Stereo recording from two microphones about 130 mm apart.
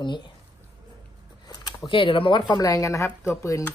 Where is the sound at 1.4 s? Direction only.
30° left (ahead or behind).